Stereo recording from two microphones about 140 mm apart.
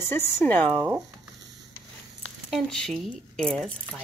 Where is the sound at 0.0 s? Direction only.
15° left (ahead or behind).